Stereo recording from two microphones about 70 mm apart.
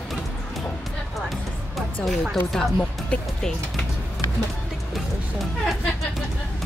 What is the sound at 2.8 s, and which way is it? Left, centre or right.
Speech, centre.